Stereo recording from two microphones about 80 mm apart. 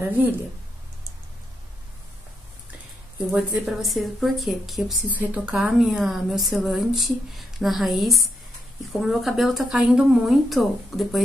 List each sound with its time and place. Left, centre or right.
0.0 s speech: right
3.5 s a woman's voice: centre
5.1 s a woman's voice: centre
5.5 s a woman's voice: centre